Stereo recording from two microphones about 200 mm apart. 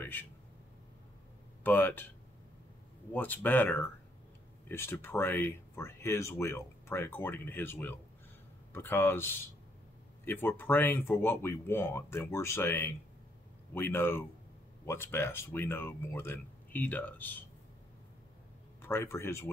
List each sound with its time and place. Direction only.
0.0 s a sound: 10° left (ahead or behind)
1.6 s speech: 10° left (ahead or behind)
3.1 s speech: 10° left (ahead or behind)
18.8 s speech: 10° left (ahead or behind)